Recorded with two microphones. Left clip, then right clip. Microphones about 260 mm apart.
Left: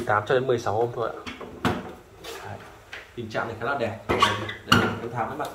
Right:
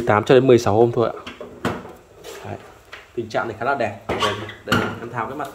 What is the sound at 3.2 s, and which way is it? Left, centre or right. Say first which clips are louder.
Speech: right 6 dB; centre.